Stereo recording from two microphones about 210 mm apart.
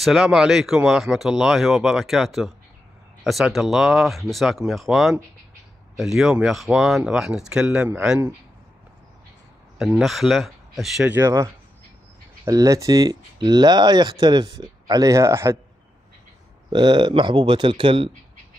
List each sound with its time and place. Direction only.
0.0 s speech: centre (ahead or behind)
9.8 s speech: centre (ahead or behind)
16.7 s speech: 20° right (ahead or behind)